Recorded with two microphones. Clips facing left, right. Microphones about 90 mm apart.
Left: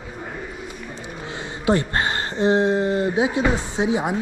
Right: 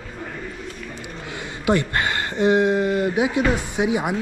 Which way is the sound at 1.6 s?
25° left (ahead or behind).